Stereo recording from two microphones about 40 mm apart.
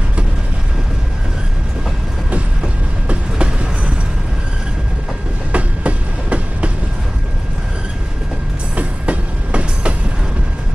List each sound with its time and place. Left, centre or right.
3.1 s train: right
5.5 s train: right
8.7 s train: right